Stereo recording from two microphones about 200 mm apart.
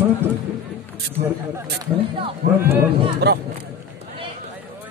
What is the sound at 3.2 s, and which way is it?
Speech, 55° right (ahead or behind).